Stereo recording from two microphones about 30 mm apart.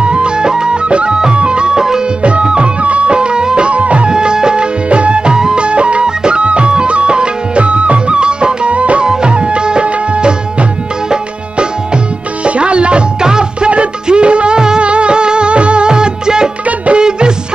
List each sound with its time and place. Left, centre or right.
0.0 s music: right
0.5 s music: right
0.8 s music: right
2.8 s music: right
3.7 s music: right
4.1 s music of bollywood: right
4.8 s music: right
5.6 s music: right
8.7 s music: right
9.0 s music: right
12.4 s music: right
13.2 s music: right
16.6 s music: right